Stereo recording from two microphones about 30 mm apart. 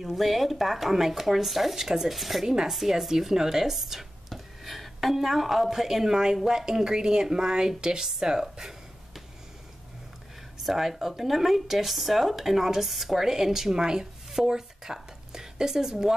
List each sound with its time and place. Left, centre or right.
0.0 s speech: centre
2.4 s a woman's voice: right
2.7 s a woman's voice: centre
10.6 s a woman's voice: centre